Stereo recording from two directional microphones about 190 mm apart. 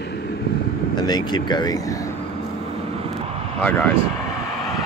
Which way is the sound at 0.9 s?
20° left (ahead or behind).